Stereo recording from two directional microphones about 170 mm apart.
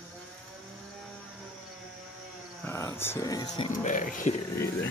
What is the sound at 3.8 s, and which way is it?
Speech, 50° left (ahead or behind).